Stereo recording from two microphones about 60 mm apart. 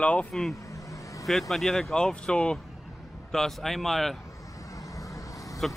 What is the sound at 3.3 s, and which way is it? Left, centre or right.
Speech, centre.